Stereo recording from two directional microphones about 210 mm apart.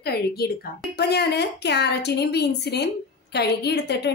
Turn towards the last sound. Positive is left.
turn(degrees=50)  # may be behind; listen again after turning